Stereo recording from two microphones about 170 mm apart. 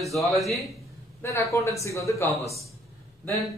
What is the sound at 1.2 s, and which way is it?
Speech, 15° left (ahead or behind).